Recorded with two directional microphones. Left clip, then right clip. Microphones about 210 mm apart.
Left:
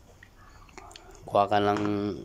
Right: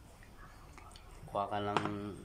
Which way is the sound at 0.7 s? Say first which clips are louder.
Left 8 dB; 45° left (ahead or behind).